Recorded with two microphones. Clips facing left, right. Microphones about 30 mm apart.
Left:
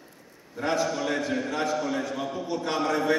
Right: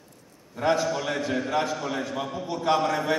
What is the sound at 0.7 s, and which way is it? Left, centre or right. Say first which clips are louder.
Speech: right 2 dB; centre.